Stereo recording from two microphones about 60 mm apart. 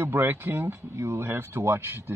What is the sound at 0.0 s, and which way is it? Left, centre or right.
Speech, right.